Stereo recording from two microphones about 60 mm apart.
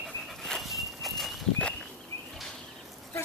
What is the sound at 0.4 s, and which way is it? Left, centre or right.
Walk, centre.